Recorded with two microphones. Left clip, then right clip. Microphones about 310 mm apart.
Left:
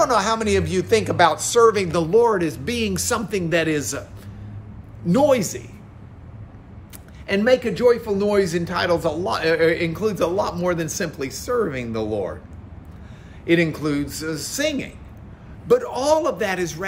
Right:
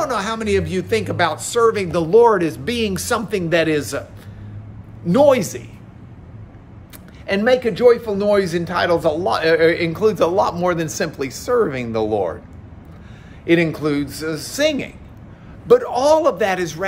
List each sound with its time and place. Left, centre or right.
0.0 s speech: centre
5.0 s speech: centre
7.2 s speech: centre
13.5 s speech: centre